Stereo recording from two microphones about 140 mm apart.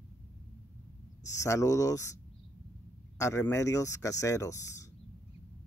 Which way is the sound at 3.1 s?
20° left (ahead or behind).